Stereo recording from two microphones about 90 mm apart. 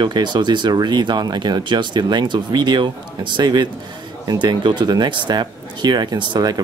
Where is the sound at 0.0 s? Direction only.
55° right (ahead or behind).